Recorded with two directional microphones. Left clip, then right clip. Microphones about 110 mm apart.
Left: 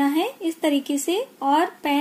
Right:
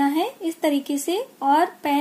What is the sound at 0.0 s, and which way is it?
Speech, 25° left (ahead or behind).